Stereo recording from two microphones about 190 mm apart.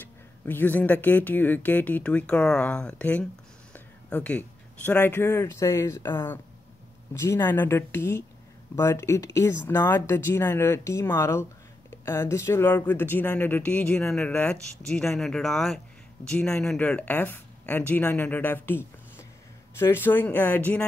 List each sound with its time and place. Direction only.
0.0 s speech: 10° left (ahead or behind)